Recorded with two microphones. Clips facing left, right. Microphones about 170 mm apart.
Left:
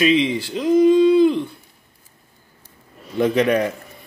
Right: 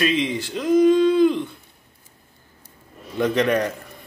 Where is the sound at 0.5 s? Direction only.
15° left (ahead or behind).